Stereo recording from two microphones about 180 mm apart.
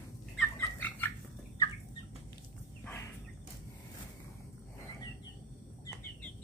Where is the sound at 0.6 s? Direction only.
10° left (ahead or behind).